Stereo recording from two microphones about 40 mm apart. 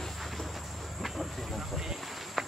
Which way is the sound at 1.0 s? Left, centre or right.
Centre.